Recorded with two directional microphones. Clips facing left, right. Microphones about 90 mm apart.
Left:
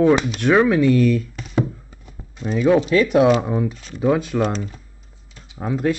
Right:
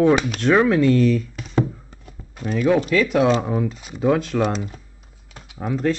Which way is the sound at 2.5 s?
10° left (ahead or behind).